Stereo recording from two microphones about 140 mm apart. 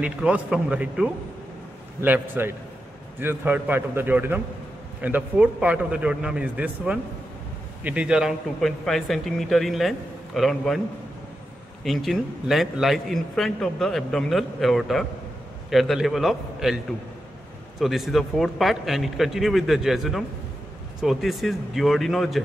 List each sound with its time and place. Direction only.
0.0 s a man's voice: 10° right (ahead or behind)
11.8 s a man's voice: centre (ahead or behind)